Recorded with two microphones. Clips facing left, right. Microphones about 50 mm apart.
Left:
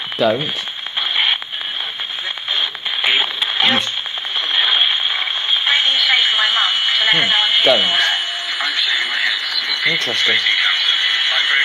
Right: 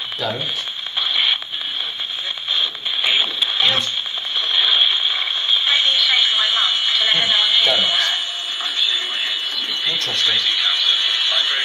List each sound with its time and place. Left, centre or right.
1.1 s radio: left
2.5 s radio: left
10.2 s radio: left